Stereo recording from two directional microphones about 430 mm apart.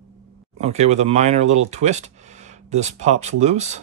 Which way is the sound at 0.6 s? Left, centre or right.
Centre.